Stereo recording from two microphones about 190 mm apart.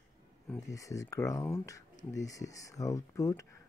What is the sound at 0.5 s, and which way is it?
Speech, 15° left (ahead or behind).